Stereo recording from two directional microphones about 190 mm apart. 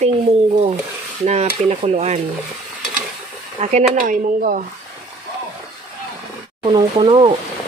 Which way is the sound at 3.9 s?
45° right (ahead or behind).